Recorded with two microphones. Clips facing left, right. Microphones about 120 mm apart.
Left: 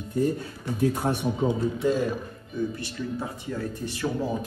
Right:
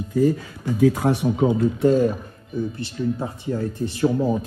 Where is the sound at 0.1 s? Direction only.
90° right.